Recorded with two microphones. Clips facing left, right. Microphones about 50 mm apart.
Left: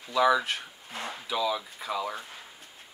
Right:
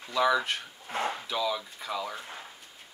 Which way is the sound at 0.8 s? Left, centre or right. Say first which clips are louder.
Right 7 dB; right.